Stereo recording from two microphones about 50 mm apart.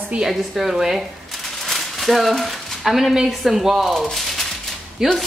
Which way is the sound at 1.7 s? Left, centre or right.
Centre.